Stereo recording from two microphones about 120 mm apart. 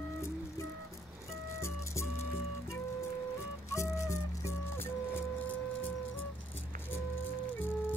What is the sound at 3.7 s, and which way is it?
Music, 25° left (ahead or behind).